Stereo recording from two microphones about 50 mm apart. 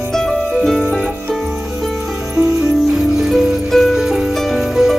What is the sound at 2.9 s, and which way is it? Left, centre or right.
Music, centre.